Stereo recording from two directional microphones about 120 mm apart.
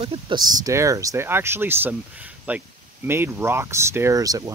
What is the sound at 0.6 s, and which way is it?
Speech, 25° right (ahead or behind).